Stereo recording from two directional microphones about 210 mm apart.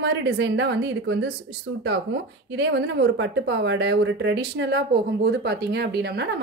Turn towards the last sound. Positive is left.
turn(degrees=-55)  # may be behind; listen again after turning